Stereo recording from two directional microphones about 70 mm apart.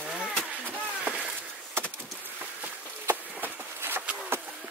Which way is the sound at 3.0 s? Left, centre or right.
Right.